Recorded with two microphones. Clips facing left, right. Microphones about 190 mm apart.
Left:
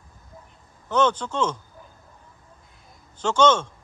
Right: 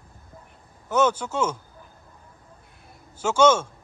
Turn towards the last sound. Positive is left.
turn(degrees=-10)  # may be behind; listen again after turning